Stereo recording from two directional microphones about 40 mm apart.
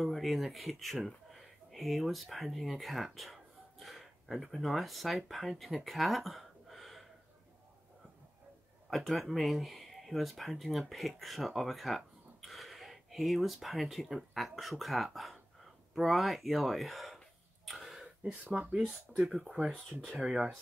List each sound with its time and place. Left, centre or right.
0.0 s speech: centre
8.9 s speech: centre
17.6 s throat clearing: centre
18.5 s speech: centre
19.5 s speech: right